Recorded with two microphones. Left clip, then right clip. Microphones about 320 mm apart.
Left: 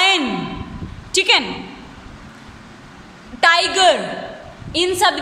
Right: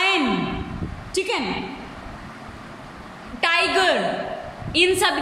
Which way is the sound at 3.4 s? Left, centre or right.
Left.